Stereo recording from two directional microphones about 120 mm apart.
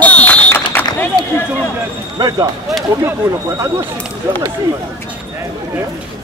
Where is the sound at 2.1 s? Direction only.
35° right (ahead or behind).